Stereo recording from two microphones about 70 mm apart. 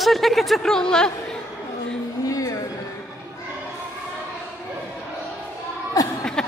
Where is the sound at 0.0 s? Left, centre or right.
Centre.